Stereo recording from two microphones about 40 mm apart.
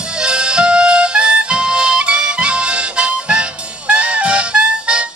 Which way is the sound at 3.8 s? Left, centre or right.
Right.